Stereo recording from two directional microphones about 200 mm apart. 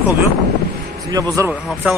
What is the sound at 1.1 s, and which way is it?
Speech, 15° right (ahead or behind).